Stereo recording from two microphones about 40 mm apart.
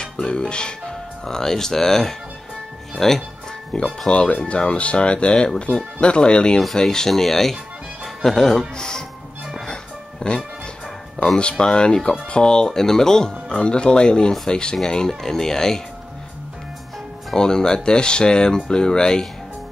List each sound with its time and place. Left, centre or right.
0.0 s speech: left
4.1 s speech: left
6.6 s speech: centre
10.2 s speech: left
13.6 s speech: left
17.4 s speech: centre